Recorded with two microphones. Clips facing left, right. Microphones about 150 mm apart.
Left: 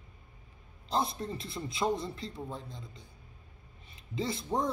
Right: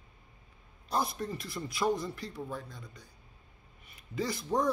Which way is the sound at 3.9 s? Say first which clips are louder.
Even; 25° left (ahead or behind).